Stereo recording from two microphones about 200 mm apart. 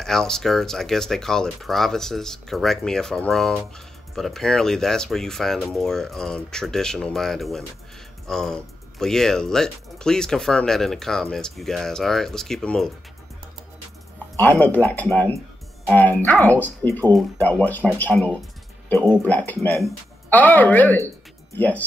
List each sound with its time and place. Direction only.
0.0 s speech: 5° left (ahead or behind)
14.3 s speech: 10° left (ahead or behind)